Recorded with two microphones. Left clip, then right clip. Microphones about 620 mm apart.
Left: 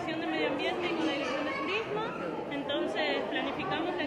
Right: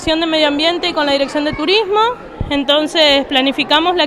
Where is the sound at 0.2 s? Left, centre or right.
Right.